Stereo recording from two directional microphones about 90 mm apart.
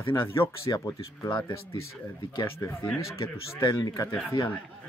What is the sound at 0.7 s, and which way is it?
Speech, 45° left (ahead or behind).